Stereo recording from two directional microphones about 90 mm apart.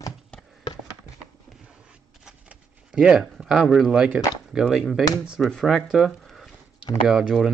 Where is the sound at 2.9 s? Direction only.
5° right (ahead or behind).